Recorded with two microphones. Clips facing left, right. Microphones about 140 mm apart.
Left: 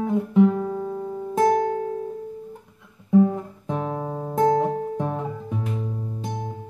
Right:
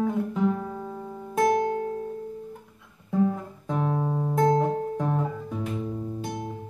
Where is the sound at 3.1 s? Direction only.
15° left (ahead or behind).